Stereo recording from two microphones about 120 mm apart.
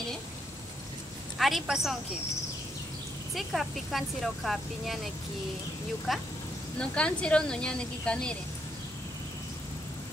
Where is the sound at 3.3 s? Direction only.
Centre (ahead or behind).